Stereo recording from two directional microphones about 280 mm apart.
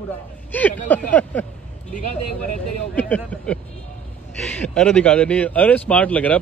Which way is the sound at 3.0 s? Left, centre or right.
Centre.